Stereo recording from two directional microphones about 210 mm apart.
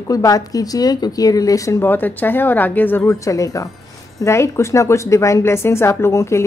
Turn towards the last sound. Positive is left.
turn(degrees=15)  # may be behind; listen again after turning